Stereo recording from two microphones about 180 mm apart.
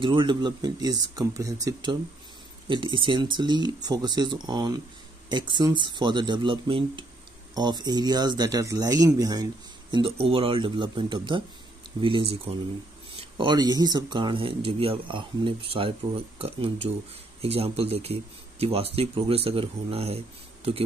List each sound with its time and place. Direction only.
0.0 s a man's voice: 25° right (ahead or behind)